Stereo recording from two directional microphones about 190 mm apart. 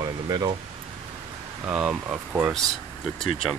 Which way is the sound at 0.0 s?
20° right (ahead or behind).